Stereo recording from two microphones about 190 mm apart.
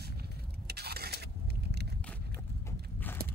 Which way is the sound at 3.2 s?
55° right (ahead or behind).